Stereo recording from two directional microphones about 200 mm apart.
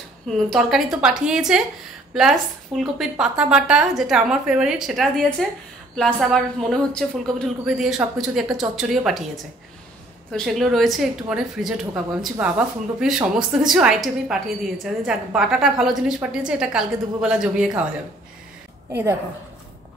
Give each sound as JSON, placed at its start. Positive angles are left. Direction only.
{"t": 0.5, "sound": "a woman's voice", "side_deg": 0}
{"t": 10.3, "sound": "a woman's voice", "side_deg": 0}
{"t": 18.9, "sound": "a woman's voice", "side_deg": -10}